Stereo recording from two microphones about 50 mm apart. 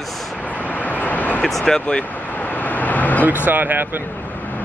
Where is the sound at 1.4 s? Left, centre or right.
Centre.